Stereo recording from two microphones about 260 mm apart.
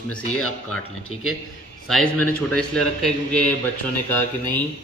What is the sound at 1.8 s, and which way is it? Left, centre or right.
A man's voice, centre.